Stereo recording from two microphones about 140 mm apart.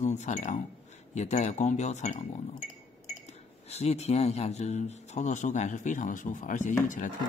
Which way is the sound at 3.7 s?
50° left (ahead or behind).